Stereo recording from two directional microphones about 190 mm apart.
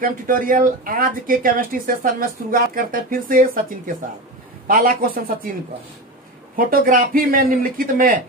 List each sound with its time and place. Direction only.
0.0 s speech: 45° right (ahead or behind)
6.5 s speech: 50° right (ahead or behind)